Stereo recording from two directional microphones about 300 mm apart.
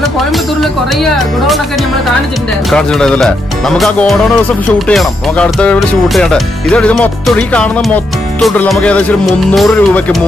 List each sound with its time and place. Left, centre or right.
2.7 s speech: centre